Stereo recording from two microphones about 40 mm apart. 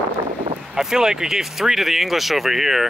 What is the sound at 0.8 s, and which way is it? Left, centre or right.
Speech, centre.